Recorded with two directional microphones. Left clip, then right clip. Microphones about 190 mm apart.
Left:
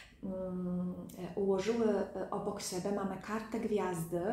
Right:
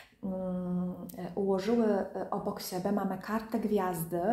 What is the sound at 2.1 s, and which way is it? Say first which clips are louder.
A woman's voice: right 3 dB; 40° right (ahead or behind).